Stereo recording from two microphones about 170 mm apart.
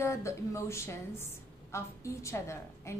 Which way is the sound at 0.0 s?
15° left (ahead or behind).